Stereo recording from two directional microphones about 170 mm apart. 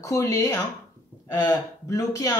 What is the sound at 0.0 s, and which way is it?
Speech, 20° left (ahead or behind).